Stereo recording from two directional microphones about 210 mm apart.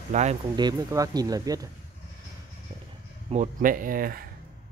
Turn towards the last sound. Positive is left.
turn(degrees=-45)  # may be behind; listen again after turning